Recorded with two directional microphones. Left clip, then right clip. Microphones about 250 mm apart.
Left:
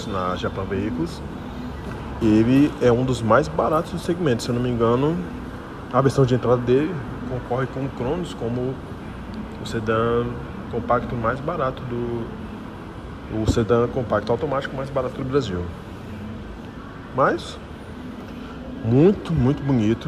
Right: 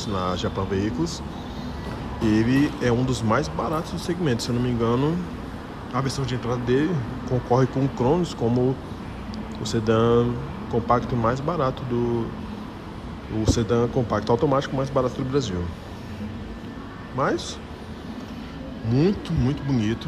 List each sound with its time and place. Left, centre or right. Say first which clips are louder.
0.1 s speech: left 2 dB; centre
2.2 s speech: left 4 dB; centre
9.7 s speech: right 1 dB; centre
13.4 s speech: left 3 dB; centre
17.2 s speech: left 5 dB; centre
18.9 s speech: left 6 dB; centre